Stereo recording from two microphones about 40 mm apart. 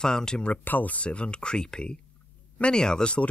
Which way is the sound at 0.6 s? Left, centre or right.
Left.